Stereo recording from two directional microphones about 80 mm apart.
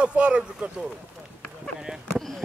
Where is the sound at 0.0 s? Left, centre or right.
Centre.